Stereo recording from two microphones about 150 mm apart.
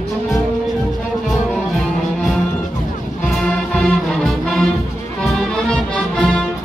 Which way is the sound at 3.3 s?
5° left (ahead or behind).